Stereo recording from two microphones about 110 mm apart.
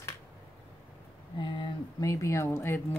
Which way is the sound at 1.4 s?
45° left (ahead or behind).